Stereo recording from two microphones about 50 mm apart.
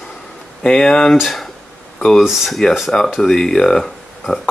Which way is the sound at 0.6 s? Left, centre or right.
Centre.